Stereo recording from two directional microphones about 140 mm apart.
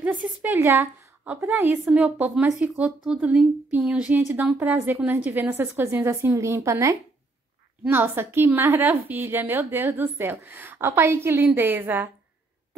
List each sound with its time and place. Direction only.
0.0 s a sound: 10° right (ahead or behind)
1.4 s a woman's voice: 15° right (ahead or behind)
1.9 s a woman's voice: 5° right (ahead or behind)